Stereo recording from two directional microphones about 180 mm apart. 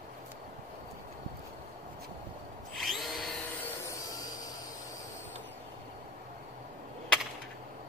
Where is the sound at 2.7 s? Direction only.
Centre (ahead or behind).